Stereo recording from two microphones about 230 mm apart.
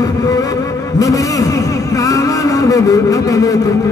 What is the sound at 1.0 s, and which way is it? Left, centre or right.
Vehicle, centre.